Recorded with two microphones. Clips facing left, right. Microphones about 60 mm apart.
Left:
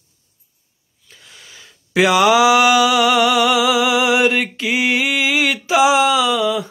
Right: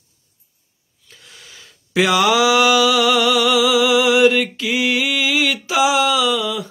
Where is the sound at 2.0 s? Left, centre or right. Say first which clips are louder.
Left 2 dB; centre.